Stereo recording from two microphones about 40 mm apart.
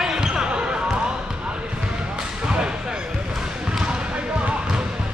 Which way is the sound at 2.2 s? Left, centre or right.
Right.